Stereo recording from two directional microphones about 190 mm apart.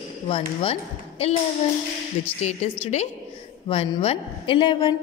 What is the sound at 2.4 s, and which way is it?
A woman's voice, 35° left (ahead or behind).